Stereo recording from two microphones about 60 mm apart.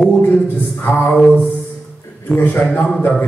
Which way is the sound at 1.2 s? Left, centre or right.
Right.